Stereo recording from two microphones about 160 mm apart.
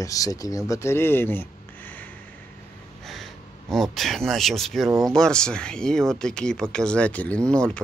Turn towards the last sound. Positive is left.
turn(degrees=5)  # may be behind; listen again after turning